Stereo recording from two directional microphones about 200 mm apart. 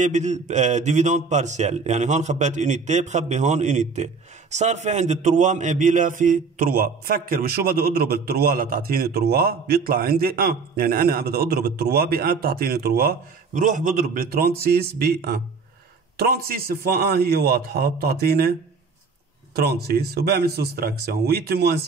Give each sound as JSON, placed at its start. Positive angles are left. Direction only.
{"t": 0.0, "sound": "a man's voice", "side_deg": -35}
{"t": 13.6, "sound": "a man's voice", "side_deg": -40}